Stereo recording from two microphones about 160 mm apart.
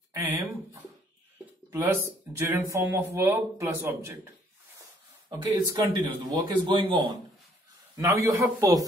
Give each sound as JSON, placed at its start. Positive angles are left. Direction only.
{"t": 0.1, "sound": "a sound", "side_deg": -15}
{"t": 1.7, "sound": "speech", "side_deg": -15}
{"t": 5.3, "sound": "a man's voice", "side_deg": -25}
{"t": 7.9, "sound": "a man's voice", "side_deg": -20}